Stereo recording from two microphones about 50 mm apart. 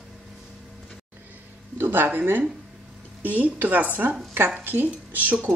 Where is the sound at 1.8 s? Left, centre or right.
Right.